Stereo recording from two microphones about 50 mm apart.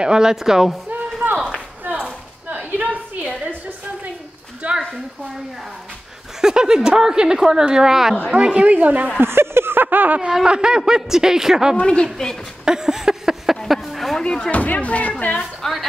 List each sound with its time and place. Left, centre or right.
0.0 s a woman's voice: centre
2.5 s a sound: right
4.6 s a sound: right
6.4 s a woman's voice: centre
8.3 s a woman's voice: centre
9.2 s a sound: right
10.3 s a woman's voice: centre
11.8 s speech: centre
12.6 s a sound: centre
14.2 s speech: centre
14.5 s speech: left
15.6 s a woman's voice: centre